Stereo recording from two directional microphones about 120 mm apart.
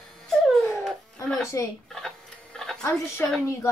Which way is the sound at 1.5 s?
25° left (ahead or behind).